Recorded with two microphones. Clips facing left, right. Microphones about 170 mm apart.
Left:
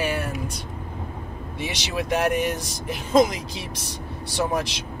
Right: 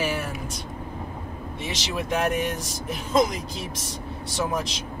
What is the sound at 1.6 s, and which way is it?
Speech, 65° left (ahead or behind).